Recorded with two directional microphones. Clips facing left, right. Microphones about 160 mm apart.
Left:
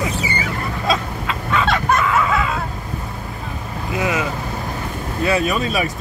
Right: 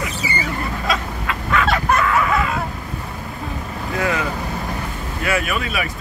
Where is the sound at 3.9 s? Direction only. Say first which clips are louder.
Even; 15° left (ahead or behind).